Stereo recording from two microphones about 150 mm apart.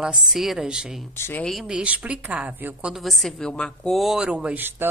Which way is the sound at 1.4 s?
5° right (ahead or behind).